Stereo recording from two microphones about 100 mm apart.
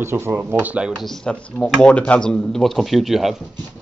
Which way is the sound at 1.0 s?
5° left (ahead or behind).